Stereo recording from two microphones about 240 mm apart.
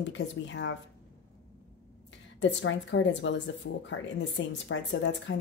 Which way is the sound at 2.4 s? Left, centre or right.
Left.